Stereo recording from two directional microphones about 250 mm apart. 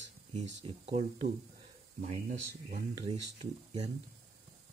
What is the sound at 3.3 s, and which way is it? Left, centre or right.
Speech, centre.